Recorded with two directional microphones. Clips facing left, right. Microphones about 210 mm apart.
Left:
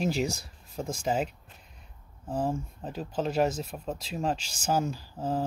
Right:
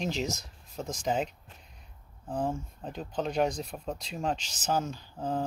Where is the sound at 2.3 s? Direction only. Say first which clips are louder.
Left 2 dB; 5° left (ahead or behind).